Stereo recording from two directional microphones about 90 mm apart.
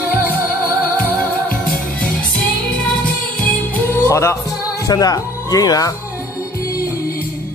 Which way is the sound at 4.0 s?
30° left (ahead or behind).